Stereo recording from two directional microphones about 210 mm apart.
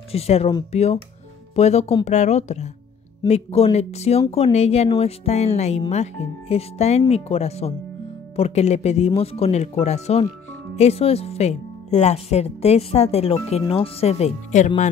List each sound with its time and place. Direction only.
0.1 s a woman's voice: 30° left (ahead or behind)